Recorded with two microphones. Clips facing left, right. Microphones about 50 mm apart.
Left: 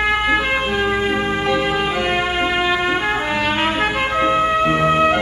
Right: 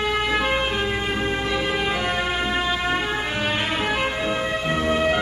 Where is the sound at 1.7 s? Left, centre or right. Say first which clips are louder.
Left 4 dB; left.